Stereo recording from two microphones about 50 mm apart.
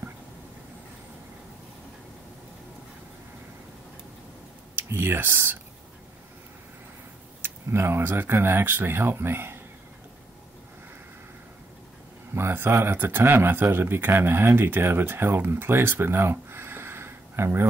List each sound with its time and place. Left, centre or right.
4.7 s speech: right
7.4 s a sound: right
8.1 s speech: right
12.4 s speech: right